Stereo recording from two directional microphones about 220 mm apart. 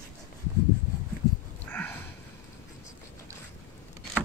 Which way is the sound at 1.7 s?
10° left (ahead or behind).